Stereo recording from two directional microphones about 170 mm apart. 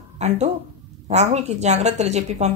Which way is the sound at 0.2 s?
40° right (ahead or behind).